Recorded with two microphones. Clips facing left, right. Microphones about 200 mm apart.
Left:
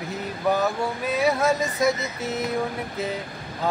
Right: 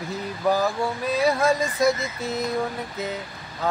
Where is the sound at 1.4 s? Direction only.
5° left (ahead or behind).